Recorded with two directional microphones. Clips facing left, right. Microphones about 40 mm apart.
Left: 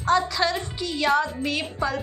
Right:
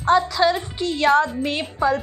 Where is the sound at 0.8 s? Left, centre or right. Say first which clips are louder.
Right 5 dB; right.